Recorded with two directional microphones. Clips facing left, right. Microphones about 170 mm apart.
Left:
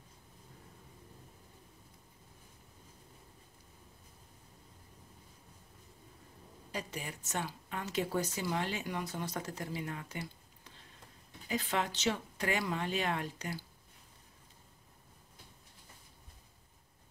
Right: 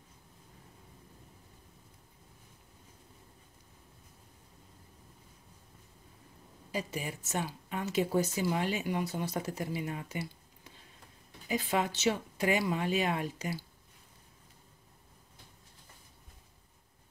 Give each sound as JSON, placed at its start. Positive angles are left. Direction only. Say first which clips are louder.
{"t": 6.7, "sound": "speech", "louder": "right 5 dB", "side_deg": -10}
{"t": 11.4, "sound": "speech", "louder": "right 3 dB", "side_deg": -10}